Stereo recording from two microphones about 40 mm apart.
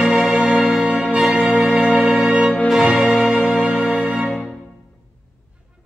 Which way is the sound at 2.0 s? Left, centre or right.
Centre.